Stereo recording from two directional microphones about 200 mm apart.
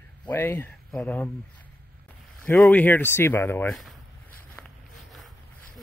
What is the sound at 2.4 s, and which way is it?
Speech, 10° left (ahead or behind).